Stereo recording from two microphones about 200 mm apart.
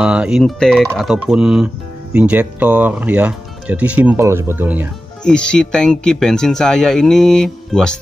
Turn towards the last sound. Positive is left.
turn(degrees=5)  # may be behind; listen again after turning